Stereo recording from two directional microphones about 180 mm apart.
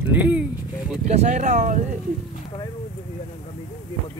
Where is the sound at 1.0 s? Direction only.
40° right (ahead or behind).